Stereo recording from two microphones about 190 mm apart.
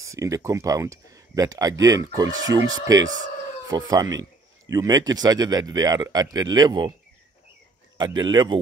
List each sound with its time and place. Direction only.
0.0 s speech: 15° right (ahead or behind)
8.2 s speech: 20° right (ahead or behind)